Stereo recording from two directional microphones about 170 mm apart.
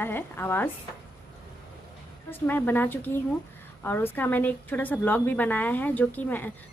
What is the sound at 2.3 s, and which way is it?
A woman's voice, 10° left (ahead or behind).